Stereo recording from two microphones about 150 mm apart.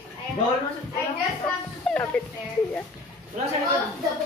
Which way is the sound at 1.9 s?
5° left (ahead or behind).